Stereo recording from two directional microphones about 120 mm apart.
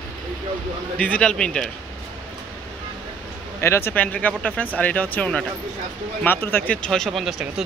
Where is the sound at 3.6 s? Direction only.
20° left (ahead or behind).